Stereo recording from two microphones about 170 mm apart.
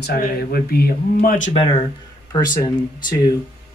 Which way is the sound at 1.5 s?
30° left (ahead or behind).